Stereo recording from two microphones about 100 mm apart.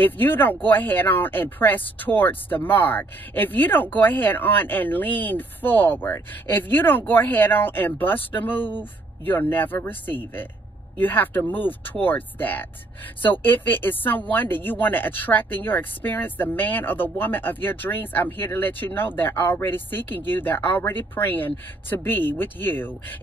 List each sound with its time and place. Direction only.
0.0 s speech: 20° left (ahead or behind)